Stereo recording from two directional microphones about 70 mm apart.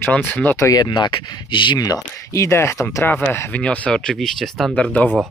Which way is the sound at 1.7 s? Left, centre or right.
Left.